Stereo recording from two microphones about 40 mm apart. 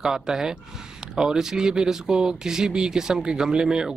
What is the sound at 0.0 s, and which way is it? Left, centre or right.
Speech, centre.